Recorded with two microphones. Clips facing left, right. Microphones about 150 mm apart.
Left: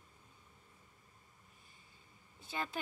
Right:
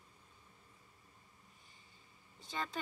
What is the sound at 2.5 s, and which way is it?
Speech, 5° left (ahead or behind).